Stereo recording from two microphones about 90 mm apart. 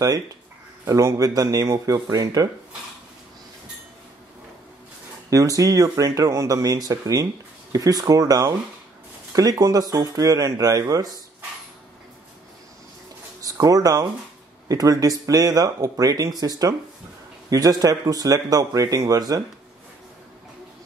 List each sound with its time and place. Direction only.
0.8 s speech: 35° right (ahead or behind)
5.3 s speech: 40° right (ahead or behind)
13.4 s speech: 40° right (ahead or behind)